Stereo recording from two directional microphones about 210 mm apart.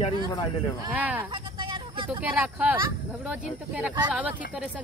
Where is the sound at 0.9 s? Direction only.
10° right (ahead or behind).